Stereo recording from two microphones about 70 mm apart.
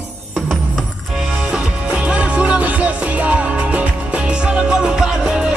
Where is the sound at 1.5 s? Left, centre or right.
Centre.